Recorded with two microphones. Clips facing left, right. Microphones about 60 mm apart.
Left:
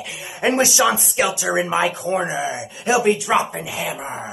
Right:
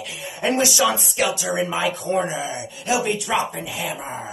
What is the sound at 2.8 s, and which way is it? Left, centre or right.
Speech, left.